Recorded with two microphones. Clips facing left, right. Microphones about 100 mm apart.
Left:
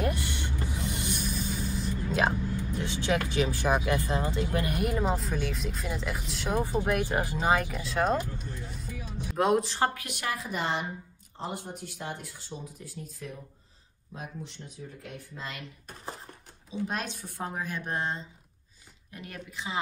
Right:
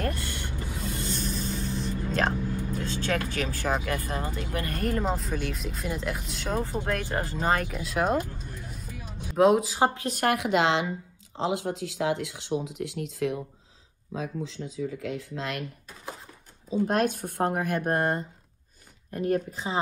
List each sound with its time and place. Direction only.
0.0 s a sound: 20° left (ahead or behind)
2.8 s speech: 15° left (ahead or behind); by 6.6 s centre (ahead or behind)
6.6 s speech: 15° left (ahead or behind); by 8.2 s 5° right (ahead or behind)
9.3 s speech: centre (ahead or behind)
9.9 s a woman's voice: 35° right (ahead or behind)
10.2 s speech: 75° right (ahead or behind)
14.8 s speech: 90° right
16.8 s speech: 55° right (ahead or behind)